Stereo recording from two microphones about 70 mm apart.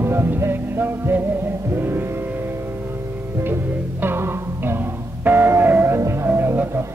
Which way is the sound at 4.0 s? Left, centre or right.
Right.